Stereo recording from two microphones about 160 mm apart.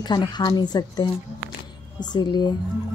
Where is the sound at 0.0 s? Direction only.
25° left (ahead or behind).